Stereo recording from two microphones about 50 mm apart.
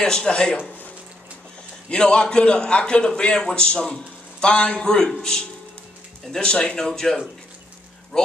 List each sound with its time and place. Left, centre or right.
0.0 s speech: centre
1.9 s a man's voice: centre
6.8 s speech: centre